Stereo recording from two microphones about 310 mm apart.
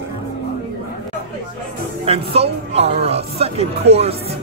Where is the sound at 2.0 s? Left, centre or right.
Centre.